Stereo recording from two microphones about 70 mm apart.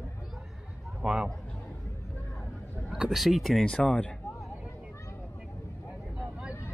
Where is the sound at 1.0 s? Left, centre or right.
Centre.